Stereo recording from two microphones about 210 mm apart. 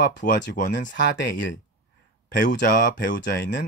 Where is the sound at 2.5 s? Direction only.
45° left (ahead or behind).